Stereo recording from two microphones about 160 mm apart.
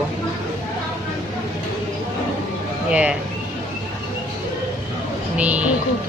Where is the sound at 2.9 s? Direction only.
5° right (ahead or behind).